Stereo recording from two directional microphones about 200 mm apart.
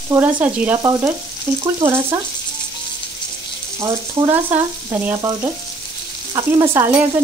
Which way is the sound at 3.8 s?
15° right (ahead or behind).